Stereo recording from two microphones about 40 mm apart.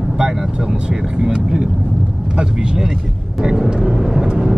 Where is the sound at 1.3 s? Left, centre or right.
Right.